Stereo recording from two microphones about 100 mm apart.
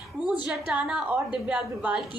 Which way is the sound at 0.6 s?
10° right (ahead or behind).